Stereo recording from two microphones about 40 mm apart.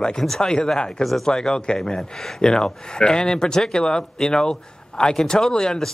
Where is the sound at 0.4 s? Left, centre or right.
Centre.